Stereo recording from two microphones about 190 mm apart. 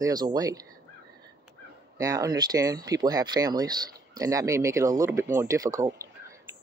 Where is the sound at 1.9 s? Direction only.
15° right (ahead or behind).